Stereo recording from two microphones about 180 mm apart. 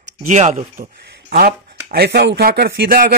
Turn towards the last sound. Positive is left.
turn(degrees=-55)  # may be behind; listen again after turning